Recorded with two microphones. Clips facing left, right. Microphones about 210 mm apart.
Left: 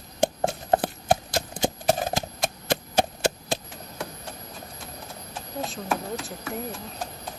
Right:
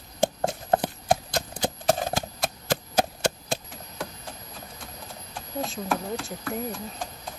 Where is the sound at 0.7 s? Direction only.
5° left (ahead or behind).